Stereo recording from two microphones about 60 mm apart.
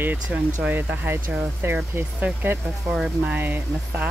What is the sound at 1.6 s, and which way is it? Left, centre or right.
Speech, right.